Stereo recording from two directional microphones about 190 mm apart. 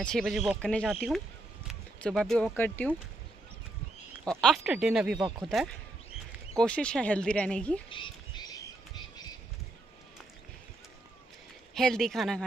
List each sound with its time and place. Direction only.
0.0 s speech: centre (ahead or behind)
4.2 s speech: 5° left (ahead or behind)
7.9 s bird: 25° left (ahead or behind)
11.7 s speech: centre (ahead or behind)